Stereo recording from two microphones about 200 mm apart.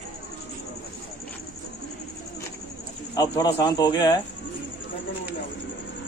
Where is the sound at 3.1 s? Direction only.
20° left (ahead or behind).